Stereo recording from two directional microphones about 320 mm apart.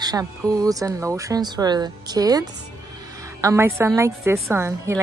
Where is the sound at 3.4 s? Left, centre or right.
Centre.